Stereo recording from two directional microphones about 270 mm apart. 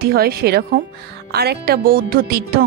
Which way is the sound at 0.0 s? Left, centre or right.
Right.